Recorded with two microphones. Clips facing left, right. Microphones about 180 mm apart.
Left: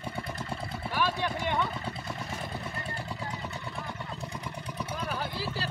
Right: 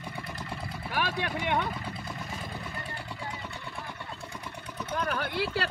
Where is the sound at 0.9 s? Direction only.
60° right (ahead or behind).